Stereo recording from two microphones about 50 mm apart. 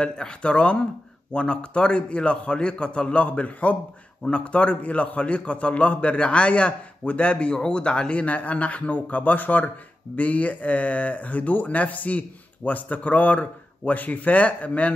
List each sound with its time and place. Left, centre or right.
0.0 s a man's voice: centre